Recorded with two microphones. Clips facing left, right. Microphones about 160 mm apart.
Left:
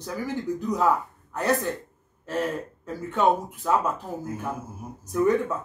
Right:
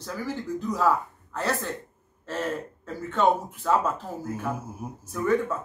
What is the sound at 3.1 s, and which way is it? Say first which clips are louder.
Speech: left 1 dB; 10° left (ahead or behind).